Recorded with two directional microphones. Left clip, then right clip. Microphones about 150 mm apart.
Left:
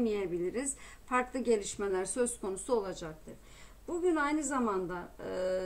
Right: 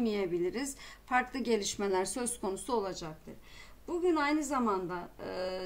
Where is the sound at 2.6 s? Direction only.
30° right (ahead or behind).